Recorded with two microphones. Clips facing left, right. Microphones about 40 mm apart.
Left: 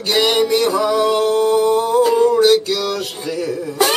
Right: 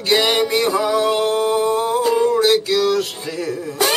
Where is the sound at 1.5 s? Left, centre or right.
Centre.